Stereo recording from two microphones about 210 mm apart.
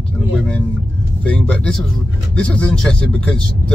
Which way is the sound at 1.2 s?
5° left (ahead or behind).